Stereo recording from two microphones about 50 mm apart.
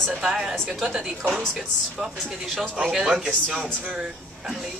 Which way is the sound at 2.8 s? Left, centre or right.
Centre.